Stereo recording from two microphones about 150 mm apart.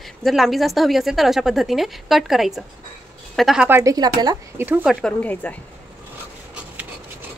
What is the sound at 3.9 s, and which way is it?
Speech, 25° right (ahead or behind).